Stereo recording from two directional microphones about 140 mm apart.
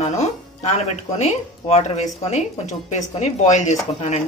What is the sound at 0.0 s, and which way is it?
Music, 50° left (ahead or behind).